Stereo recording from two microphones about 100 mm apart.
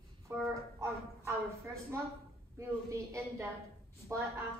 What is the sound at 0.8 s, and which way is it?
A woman's voice, 30° right (ahead or behind).